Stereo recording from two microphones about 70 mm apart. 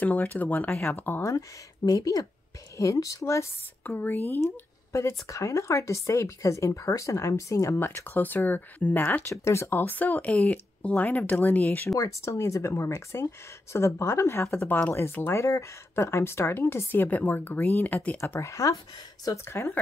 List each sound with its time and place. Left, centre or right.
0.0 s speech: left
1.9 s speech: left
2.8 s speech: left
3.8 s speech: left
4.5 s speech: left
9.3 s speech: left
9.7 s speech: left
12.0 s speech: left
14.7 s speech: left
15.3 s speech: left
18.4 s speech: left